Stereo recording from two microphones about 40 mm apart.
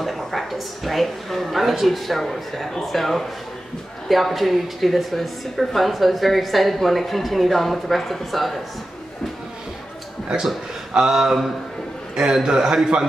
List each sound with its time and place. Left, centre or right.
0.0 s a woman's voice: centre
11.0 s speech: centre
12.4 s a man's voice: centre